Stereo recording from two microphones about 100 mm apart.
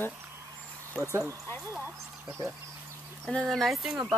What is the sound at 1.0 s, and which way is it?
Speech, 30° right (ahead or behind).